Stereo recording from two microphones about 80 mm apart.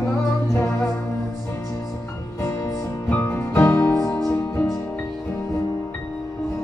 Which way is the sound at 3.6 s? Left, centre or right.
Left.